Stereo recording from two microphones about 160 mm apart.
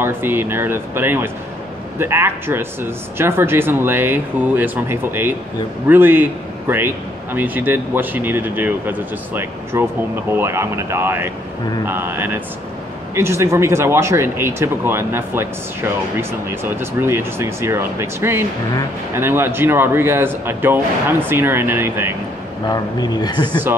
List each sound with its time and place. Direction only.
0.0 s speech: 15° right (ahead or behind)
22.7 s speech: 25° left (ahead or behind)